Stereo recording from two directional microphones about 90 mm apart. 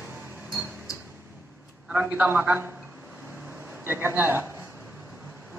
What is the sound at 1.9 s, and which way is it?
Speech, 20° right (ahead or behind).